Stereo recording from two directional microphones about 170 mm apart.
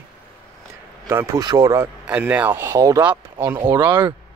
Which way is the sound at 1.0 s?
15° right (ahead or behind).